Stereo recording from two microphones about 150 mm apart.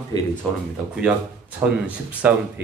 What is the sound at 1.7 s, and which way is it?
Speech, 10° right (ahead or behind).